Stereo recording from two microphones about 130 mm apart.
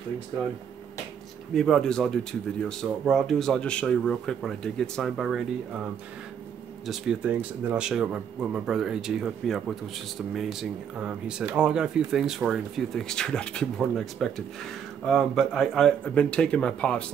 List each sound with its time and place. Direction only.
1.5 s speech: 5° left (ahead or behind)
6.9 s speech: 10° right (ahead or behind); by 17.0 s 10° left (ahead or behind)